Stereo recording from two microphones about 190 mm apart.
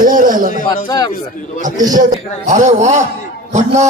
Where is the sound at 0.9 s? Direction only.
20° left (ahead or behind).